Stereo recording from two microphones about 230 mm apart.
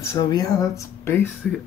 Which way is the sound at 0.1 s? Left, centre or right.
Centre.